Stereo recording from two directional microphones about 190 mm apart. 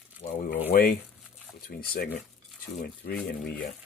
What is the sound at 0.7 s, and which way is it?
Speech, 50° left (ahead or behind).